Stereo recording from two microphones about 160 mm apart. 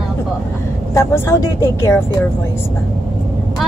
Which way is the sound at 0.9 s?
15° left (ahead or behind).